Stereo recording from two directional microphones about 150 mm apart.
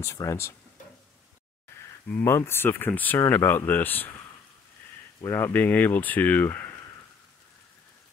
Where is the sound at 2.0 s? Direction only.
15° left (ahead or behind).